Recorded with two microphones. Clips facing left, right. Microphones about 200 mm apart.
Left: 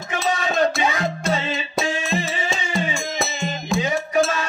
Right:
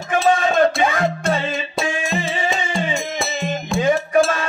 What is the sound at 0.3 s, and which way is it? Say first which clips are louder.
Music: right 4 dB; 50° right (ahead or behind).